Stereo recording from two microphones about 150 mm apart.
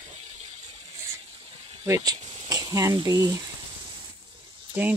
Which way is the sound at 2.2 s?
40° right (ahead or behind).